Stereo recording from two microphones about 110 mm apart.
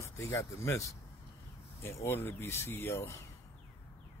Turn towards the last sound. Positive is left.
turn(degrees=20)  # may be behind; listen again after turning